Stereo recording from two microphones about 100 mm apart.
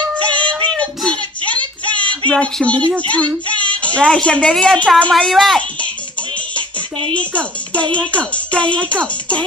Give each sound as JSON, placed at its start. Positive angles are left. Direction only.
{"t": 0.3, "sound": "child singing", "side_deg": 10}
{"t": 3.8, "sound": "speech", "side_deg": 10}
{"t": 5.1, "sound": "a child's voice", "side_deg": 0}
{"t": 6.5, "sound": "music", "side_deg": -55}
{"t": 7.2, "sound": "speech", "side_deg": 15}